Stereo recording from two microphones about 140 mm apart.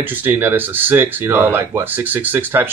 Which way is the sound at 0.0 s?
15° right (ahead or behind).